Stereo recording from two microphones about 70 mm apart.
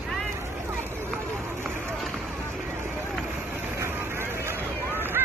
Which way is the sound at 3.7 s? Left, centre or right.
Right.